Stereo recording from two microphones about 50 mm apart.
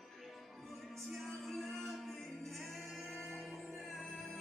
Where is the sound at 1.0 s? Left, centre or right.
Centre.